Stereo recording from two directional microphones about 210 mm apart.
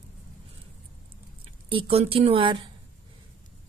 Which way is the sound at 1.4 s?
25° right (ahead or behind).